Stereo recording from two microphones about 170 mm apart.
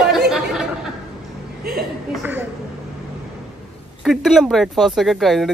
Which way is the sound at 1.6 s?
65° right (ahead or behind).